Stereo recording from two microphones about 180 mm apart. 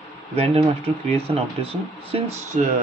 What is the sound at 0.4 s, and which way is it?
Speech, 35° right (ahead or behind).